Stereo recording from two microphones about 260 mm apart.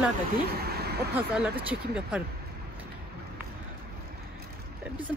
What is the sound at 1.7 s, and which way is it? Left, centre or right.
Speech, centre.